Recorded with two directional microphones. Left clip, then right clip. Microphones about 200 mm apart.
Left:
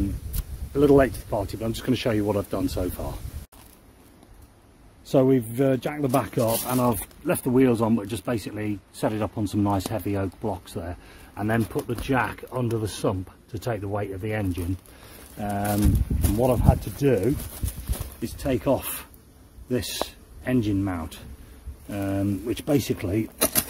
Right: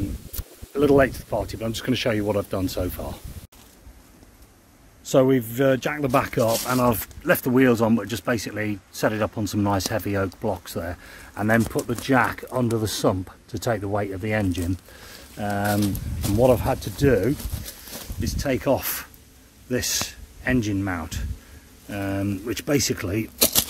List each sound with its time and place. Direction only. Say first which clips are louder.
0.4 s speech: even; 10° left (ahead or behind)
5.0 s speech: right 2 dB; centre (ahead or behind); by 14.6 s 35° right (ahead or behind)
15.3 s speech: right 3 dB; 20° right (ahead or behind)
17.0 s speech: right 2 dB; 5° right (ahead or behind)